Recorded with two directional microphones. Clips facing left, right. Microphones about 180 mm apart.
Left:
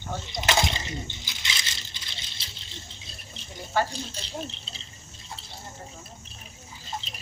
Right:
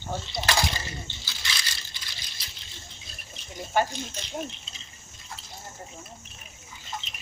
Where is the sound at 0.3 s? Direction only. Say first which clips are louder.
Left 3 dB; 20° left (ahead or behind).